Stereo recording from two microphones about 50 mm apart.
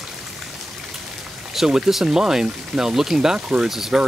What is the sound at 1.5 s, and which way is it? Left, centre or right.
Speech, centre.